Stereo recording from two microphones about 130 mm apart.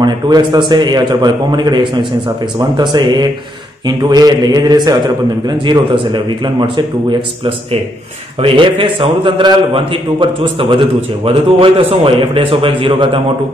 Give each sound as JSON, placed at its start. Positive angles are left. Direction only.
{"t": 0.0, "sound": "a man's voice", "side_deg": -35}